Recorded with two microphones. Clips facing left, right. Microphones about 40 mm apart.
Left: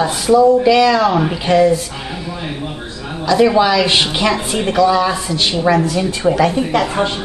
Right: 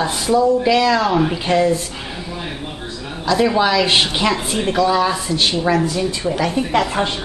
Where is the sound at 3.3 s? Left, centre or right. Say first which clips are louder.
Left 4 dB; centre.